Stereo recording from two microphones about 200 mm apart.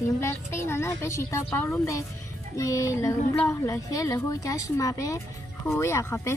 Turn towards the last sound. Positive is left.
turn(degrees=15)  # may be behind; listen again after turning